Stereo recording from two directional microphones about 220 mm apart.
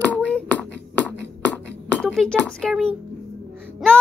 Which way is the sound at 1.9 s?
5° left (ahead or behind).